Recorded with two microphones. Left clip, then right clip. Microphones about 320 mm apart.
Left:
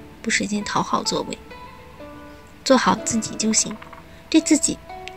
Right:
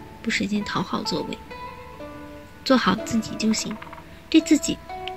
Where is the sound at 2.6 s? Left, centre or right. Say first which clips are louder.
Left 3 dB; centre.